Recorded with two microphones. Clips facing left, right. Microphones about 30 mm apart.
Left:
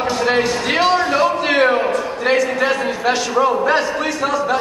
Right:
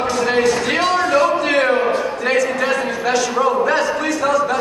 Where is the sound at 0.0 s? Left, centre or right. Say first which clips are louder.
Right 1 dB; centre.